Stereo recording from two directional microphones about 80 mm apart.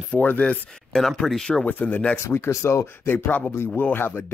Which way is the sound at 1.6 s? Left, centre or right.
Left.